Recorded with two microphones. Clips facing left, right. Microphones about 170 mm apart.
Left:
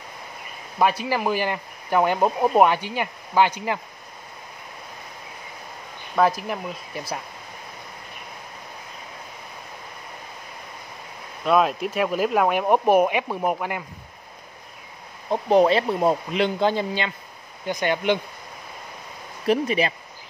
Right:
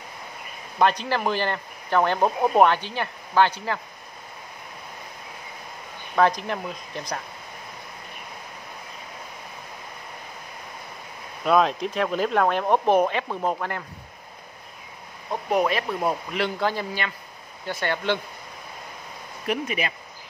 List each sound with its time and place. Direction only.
0.7 s speech: 10° left (ahead or behind)
6.1 s speech: 5° left (ahead or behind)
11.4 s speech: 5° left (ahead or behind)
15.5 s speech: 30° left (ahead or behind)
19.4 s speech: 30° left (ahead or behind)